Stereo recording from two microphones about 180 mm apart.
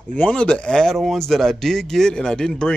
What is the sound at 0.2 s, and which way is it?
Speech, 5° left (ahead or behind).